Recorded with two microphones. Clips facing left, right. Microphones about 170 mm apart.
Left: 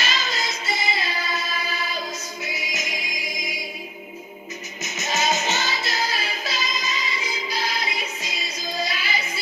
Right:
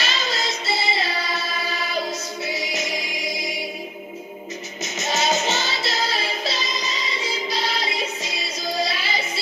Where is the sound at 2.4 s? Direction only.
30° right (ahead or behind).